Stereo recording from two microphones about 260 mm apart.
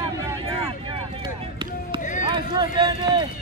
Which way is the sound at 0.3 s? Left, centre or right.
Centre.